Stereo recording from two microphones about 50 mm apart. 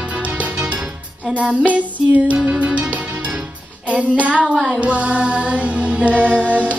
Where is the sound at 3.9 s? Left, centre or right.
Right.